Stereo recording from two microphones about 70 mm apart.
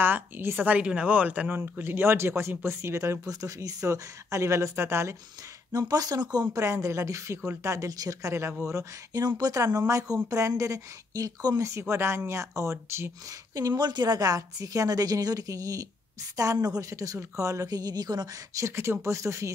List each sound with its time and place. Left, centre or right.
0.0 s speech: right
0.7 s speech: right
1.6 s speech: right
5.7 s a woman's voice: right
6.5 s speech: right
9.4 s a woman's voice: right
11.8 s speech: right
13.7 s a woman's voice: right
18.8 s speech: right